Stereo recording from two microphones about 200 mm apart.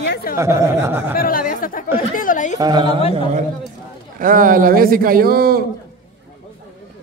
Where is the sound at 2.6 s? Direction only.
20° right (ahead or behind).